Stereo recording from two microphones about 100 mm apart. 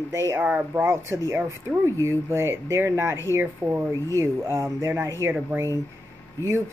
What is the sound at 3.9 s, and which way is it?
Speech, 30° right (ahead or behind).